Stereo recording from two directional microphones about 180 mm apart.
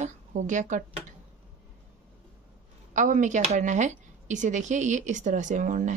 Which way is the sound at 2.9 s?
45° right (ahead or behind).